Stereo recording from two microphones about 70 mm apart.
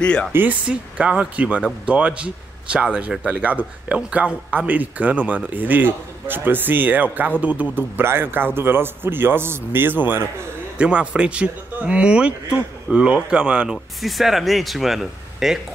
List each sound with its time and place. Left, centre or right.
0.0 s speech: centre
0.3 s speech: right
0.7 s speech: centre
7.7 s a man's voice: right
10.8 s speech: centre
14.0 s speech: centre